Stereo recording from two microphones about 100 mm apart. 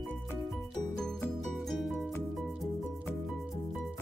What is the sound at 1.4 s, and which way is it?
Music, centre (ahead or behind).